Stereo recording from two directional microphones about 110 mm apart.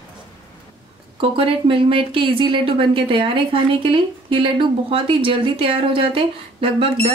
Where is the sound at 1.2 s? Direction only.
55° right (ahead or behind).